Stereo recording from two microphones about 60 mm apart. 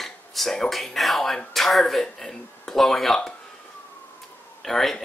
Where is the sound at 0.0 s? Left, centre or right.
Centre.